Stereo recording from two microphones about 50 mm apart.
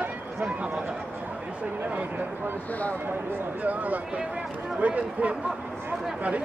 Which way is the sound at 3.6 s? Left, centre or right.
Right.